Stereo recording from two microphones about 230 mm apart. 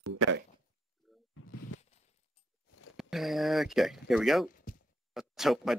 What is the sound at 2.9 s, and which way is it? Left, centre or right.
Speech, centre.